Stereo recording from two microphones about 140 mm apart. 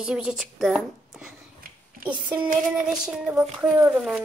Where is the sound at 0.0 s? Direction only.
5° right (ahead or behind).